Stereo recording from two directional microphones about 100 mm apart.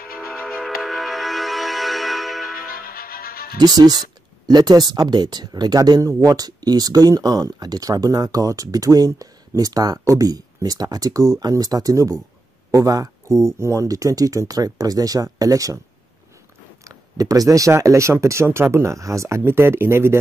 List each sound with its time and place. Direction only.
0.3 s music: 5° right (ahead or behind)
3.5 s speech: 40° right (ahead or behind)
16.8 s speech: 35° right (ahead or behind)